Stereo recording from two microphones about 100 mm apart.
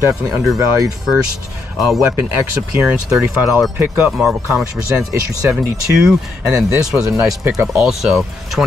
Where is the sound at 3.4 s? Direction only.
5° right (ahead or behind).